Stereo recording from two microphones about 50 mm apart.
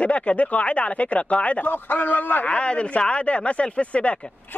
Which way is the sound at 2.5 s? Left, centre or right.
Left.